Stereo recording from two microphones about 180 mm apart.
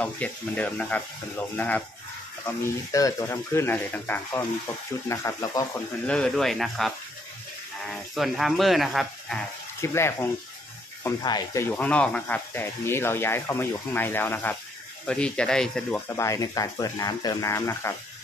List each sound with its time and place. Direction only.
0.0 s speech: 10° left (ahead or behind)
6.0 s speech: 5° left (ahead or behind)
7.9 s speech: centre (ahead or behind)
9.8 s speech: 15° left (ahead or behind)
16.2 s speech: 20° left (ahead or behind)